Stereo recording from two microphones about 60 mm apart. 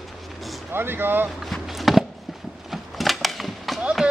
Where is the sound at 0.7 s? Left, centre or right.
Right.